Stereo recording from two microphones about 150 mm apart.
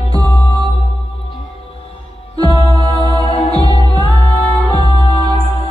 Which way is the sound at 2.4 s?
40° left (ahead or behind).